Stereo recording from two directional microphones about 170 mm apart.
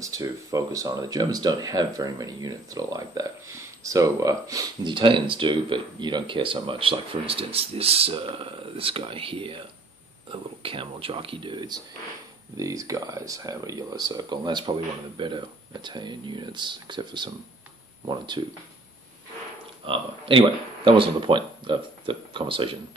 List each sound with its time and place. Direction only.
0.0 s speech: 20° right (ahead or behind)
19.8 s speech: 30° right (ahead or behind)